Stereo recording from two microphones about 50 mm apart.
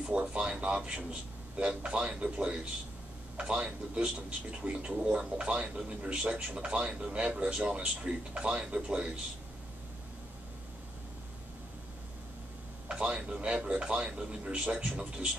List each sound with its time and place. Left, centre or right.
0.0 s a man's voice: right
13.0 s a man's voice: right